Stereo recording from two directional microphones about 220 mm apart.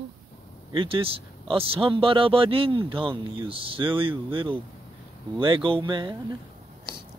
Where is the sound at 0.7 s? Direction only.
25° right (ahead or behind).